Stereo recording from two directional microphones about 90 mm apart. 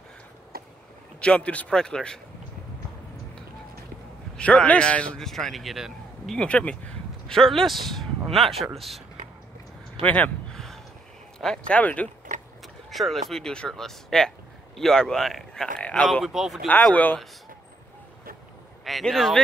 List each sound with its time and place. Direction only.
1.2 s a man's voice: 10° left (ahead or behind)
4.4 s a man's voice: 15° left (ahead or behind); by 6.3 s 5° right (ahead or behind)
6.3 s a man's voice: 10° left (ahead or behind)
10.0 s a man's voice: 15° left (ahead or behind)
10.5 s a sound: 5° left (ahead or behind)
11.4 s a man's voice: 10° left (ahead or behind)
12.9 s speech: centre (ahead or behind)
16.3 s speech: 5° right (ahead or behind)
16.9 s a man's voice: 20° left (ahead or behind)
18.9 s speech: centre (ahead or behind)